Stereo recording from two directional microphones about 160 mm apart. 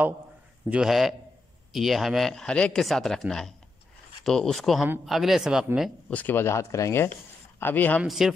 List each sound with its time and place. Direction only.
0.7 s speech: 5° right (ahead or behind)
5.8 s speech: 10° left (ahead or behind)
8.0 s speech: centre (ahead or behind)